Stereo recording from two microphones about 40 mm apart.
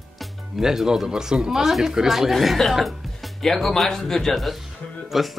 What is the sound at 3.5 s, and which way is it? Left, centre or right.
Speech, centre.